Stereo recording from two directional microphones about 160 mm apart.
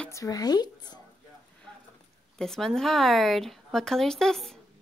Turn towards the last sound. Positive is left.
turn(degrees=0)  # may be behind; listen again after turning